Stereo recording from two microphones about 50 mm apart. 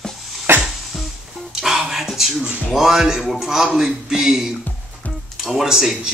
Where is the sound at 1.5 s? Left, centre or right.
Centre.